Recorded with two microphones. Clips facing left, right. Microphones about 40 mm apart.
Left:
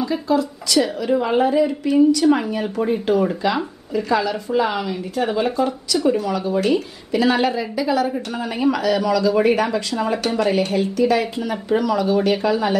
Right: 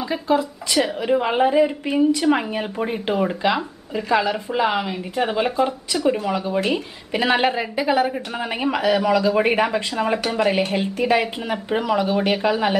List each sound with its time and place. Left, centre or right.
0.0 s speech: right
7.1 s speech: right